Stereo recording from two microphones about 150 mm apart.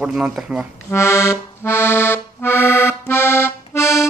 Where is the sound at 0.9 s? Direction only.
15° left (ahead or behind).